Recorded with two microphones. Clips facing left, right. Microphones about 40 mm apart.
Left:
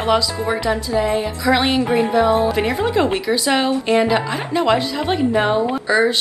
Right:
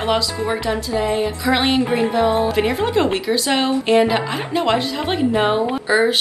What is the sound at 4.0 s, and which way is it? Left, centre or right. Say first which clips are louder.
Speech: even; centre.